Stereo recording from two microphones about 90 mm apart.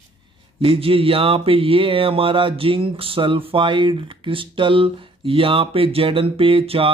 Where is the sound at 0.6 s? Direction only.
85° right.